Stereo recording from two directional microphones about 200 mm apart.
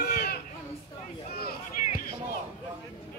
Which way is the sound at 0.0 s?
50° left (ahead or behind).